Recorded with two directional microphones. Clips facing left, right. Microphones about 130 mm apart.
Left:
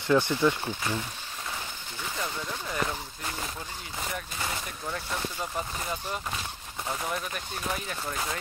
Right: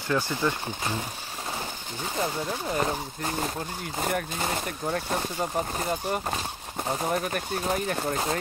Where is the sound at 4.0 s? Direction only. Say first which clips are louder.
Right 7 dB; 50° right (ahead or behind).